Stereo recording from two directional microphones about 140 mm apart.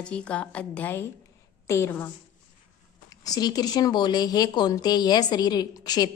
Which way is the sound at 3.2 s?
30° left (ahead or behind).